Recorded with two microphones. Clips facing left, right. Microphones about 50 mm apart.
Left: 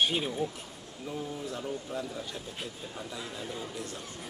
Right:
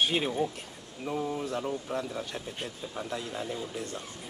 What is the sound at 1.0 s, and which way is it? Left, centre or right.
Speech, right.